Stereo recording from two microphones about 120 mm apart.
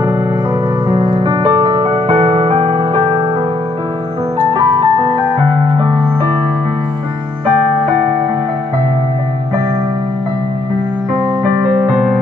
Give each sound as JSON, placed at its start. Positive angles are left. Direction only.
{"t": 0.8, "sound": "music", "side_deg": -35}
{"t": 4.6, "sound": "music", "side_deg": -45}